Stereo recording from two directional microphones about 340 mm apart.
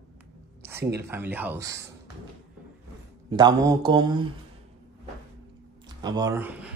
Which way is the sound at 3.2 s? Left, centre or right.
Centre.